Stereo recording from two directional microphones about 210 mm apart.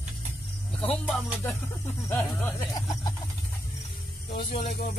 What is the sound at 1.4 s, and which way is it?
Snake, 10° left (ahead or behind).